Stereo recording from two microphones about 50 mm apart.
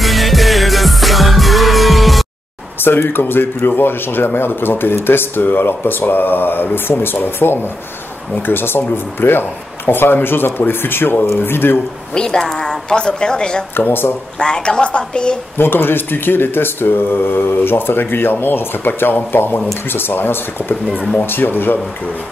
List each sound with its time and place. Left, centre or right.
0.0 s music: centre
2.8 s speech: left
12.1 s a woman's voice: centre
13.7 s speech: left
14.4 s a woman's voice: centre
15.5 s speech: left